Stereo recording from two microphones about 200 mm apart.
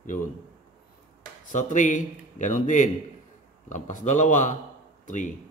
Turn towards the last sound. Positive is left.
turn(degrees=40)  # may be behind; listen again after turning